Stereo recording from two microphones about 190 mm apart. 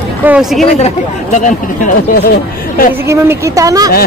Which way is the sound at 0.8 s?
40° left (ahead or behind).